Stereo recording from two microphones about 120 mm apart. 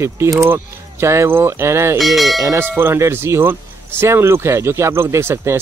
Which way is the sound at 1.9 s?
Centre (ahead or behind).